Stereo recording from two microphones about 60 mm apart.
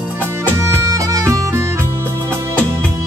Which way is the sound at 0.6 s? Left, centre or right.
Right.